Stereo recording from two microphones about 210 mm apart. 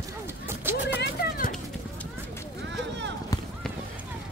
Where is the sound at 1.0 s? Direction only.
45° left (ahead or behind).